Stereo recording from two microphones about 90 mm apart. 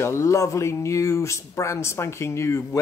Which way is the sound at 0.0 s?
35° left (ahead or behind).